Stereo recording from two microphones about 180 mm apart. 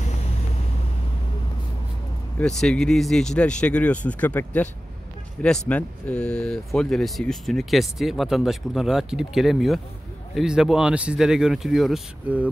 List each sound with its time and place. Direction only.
2.3 s speech: 5° left (ahead or behind)